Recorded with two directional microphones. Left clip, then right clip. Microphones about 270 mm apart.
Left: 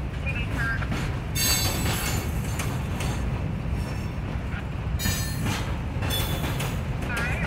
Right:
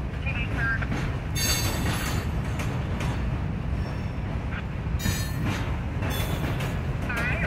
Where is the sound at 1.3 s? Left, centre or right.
Left.